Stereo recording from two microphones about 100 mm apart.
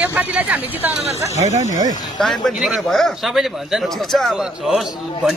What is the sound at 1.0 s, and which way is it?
Speech, 90° right.